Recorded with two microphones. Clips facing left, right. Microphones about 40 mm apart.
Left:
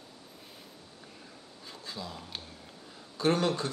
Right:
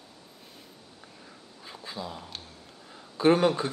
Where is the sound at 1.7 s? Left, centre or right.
Centre.